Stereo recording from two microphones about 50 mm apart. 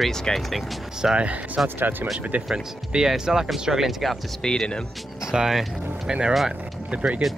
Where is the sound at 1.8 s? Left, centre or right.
Right.